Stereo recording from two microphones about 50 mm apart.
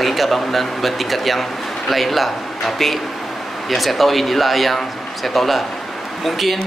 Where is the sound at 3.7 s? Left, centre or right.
Centre.